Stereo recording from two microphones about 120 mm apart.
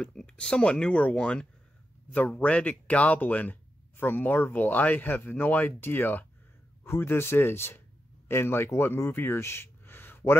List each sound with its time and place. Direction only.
0.0 s speech: 5° left (ahead or behind)